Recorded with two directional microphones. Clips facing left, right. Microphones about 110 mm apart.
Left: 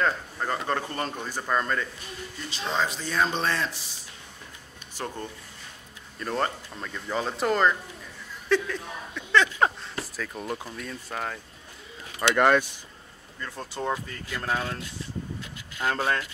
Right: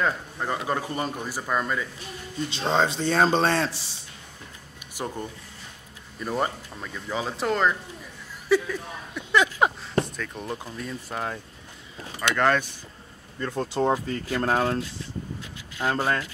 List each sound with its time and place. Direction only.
0.0 s speech: 10° right (ahead or behind)
2.5 s speech: 30° right (ahead or behind)
4.9 s speech: 15° right (ahead or behind)
10.0 s speech: 5° left (ahead or behind)
12.2 s speech: 10° left (ahead or behind)
13.6 s speech: 35° right (ahead or behind)
15.8 s speech: 10° right (ahead or behind)